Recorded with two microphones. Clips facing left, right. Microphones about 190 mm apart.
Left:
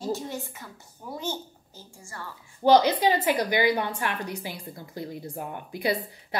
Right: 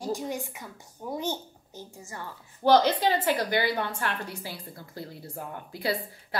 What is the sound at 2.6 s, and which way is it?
A woman's voice, 15° left (ahead or behind).